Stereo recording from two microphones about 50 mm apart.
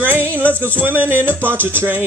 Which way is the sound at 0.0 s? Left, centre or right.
Right.